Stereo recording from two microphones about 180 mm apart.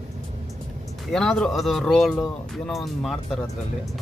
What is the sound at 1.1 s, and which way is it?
Speech, centre (ahead or behind).